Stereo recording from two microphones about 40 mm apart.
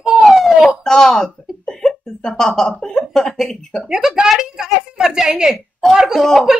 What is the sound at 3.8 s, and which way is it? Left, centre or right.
A woman's voice, centre.